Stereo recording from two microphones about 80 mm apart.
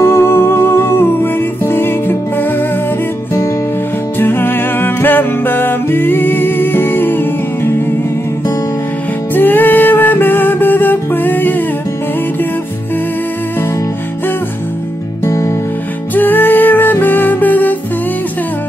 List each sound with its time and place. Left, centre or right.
0.0 s music: left
4.2 s music: left
9.3 s music: left
15.2 s music: left
16.2 s music: left